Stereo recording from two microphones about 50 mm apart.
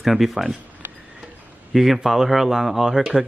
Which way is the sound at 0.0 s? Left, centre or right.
Centre.